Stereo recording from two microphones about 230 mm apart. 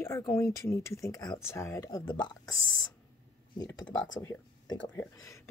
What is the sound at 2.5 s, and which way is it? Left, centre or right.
Speech, left.